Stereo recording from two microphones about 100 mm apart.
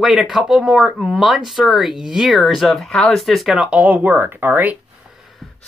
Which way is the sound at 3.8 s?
15° right (ahead or behind).